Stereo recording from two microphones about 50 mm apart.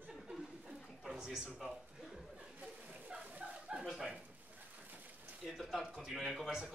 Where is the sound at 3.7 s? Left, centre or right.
Centre.